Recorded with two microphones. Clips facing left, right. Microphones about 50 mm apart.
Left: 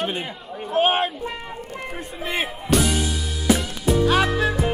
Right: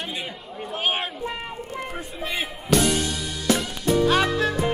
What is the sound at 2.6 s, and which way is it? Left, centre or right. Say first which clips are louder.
Music: right 1 dB; centre.